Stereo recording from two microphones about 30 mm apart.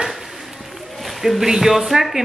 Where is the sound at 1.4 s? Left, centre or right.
Centre.